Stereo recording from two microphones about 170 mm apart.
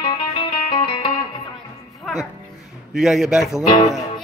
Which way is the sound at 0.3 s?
30° left (ahead or behind).